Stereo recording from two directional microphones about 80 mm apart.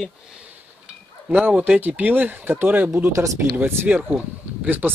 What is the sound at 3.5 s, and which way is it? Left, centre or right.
Speech, right.